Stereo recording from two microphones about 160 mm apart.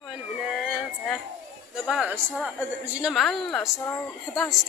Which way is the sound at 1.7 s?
Centre (ahead or behind).